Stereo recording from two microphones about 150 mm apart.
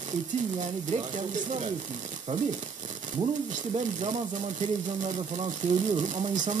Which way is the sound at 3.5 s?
55° right (ahead or behind).